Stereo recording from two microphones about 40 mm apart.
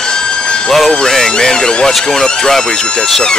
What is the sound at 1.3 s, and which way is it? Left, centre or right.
Speech, centre.